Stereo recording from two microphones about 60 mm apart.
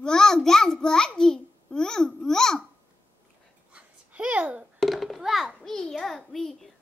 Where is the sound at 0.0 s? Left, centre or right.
Centre.